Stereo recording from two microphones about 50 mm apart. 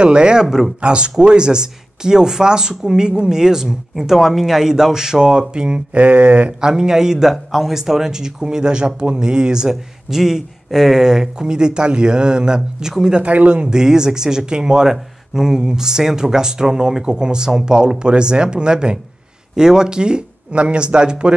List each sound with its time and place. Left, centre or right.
0.0 s speech: centre
6.6 s speech: centre
13.1 s speech: right